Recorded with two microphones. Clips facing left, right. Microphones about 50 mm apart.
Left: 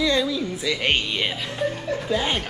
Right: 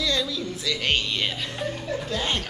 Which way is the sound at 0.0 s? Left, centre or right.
Centre.